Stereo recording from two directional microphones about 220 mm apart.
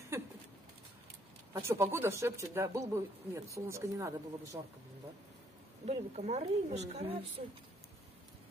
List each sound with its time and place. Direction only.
0.1 s a sound: 10° right (ahead or behind)
1.5 s speech: 10° right (ahead or behind)
5.9 s speech: 30° right (ahead or behind)